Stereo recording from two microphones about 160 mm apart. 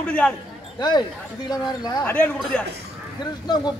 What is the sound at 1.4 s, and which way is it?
Speech, 25° left (ahead or behind).